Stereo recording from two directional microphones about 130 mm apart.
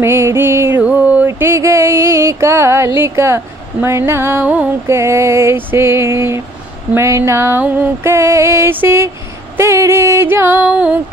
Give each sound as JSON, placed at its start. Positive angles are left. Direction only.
{"t": 0.0, "sound": "music", "side_deg": -20}
{"t": 6.9, "sound": "female singing", "side_deg": -20}
{"t": 9.6, "sound": "music", "side_deg": -20}